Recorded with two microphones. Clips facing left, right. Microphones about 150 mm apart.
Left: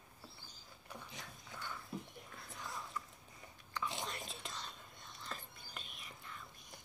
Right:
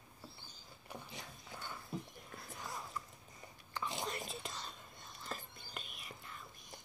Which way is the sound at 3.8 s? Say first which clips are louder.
Right 2 dB; centre (ahead or behind).